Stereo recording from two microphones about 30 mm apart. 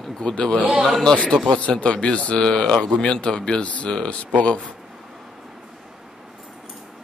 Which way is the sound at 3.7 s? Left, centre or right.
Left.